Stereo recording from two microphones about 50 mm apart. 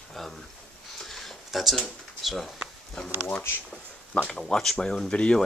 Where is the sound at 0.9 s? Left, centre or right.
Centre.